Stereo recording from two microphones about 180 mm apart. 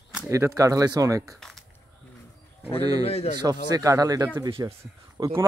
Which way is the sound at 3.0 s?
35° left (ahead or behind).